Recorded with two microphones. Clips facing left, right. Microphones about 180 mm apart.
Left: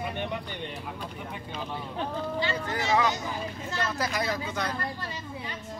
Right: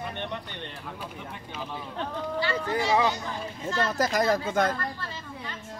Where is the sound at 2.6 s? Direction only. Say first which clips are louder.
Right 2 dB; 20° right (ahead or behind).